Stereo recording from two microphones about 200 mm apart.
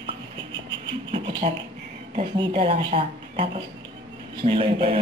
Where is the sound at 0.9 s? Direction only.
25° right (ahead or behind).